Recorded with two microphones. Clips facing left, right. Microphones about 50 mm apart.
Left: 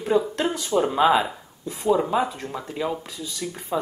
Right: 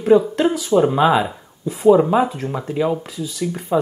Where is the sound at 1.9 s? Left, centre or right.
Centre.